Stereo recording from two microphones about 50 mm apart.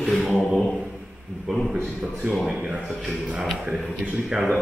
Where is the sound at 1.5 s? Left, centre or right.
Centre.